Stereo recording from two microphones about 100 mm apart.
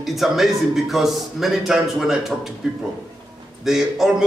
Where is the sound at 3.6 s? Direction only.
5° right (ahead or behind).